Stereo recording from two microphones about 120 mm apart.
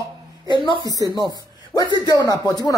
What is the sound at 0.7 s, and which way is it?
Speech, 35° right (ahead or behind).